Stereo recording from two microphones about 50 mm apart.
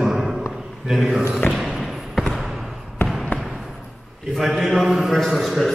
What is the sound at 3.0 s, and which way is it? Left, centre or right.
Trickle, left.